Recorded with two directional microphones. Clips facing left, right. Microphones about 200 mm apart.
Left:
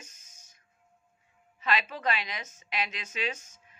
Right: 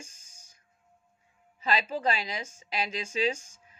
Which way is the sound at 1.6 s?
30° right (ahead or behind).